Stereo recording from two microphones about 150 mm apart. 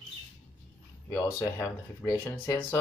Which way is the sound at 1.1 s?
20° left (ahead or behind).